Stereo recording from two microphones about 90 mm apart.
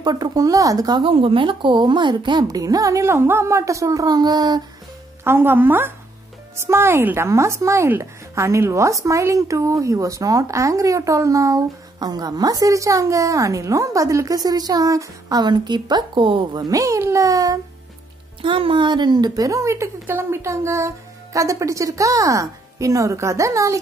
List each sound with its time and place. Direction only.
0.0 s speech: 50° right (ahead or behind)
1.0 s a woman's voice: 85° right; by 2.4 s 60° right (ahead or behind)
2.5 s speech: 40° right (ahead or behind)
5.2 s a woman's voice: 25° right (ahead or behind); by 16.3 s 55° right (ahead or behind)
16.5 s speech: 40° right (ahead or behind)
18.4 s speech: 70° right (ahead or behind); by 23.8 s 35° right (ahead or behind)